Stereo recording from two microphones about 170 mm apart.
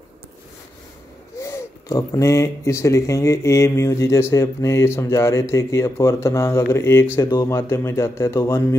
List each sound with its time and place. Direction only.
1.4 s speech: 20° left (ahead or behind)